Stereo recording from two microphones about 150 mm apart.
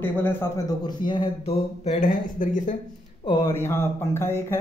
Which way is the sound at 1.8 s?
55° left (ahead or behind).